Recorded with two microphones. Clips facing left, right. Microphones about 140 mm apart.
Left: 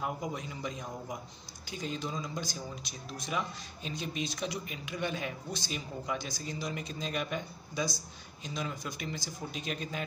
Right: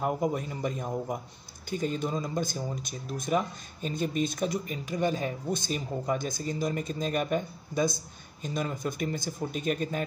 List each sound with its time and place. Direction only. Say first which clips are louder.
0.0 s speech: right 8 dB; 50° right (ahead or behind)